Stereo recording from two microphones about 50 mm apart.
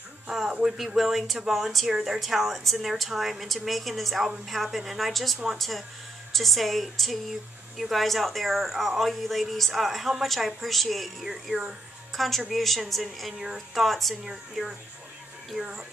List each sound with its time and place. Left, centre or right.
0.3 s speech: centre
2.1 s speech: centre
12.2 s speech: centre
15.5 s speech: centre